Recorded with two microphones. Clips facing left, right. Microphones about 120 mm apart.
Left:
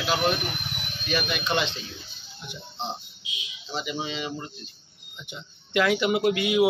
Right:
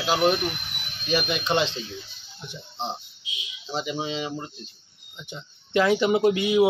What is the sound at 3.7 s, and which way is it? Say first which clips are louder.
Speech: right 3 dB; 30° right (ahead or behind).